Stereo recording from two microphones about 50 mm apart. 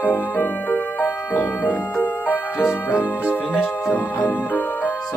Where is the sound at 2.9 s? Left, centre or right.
Right.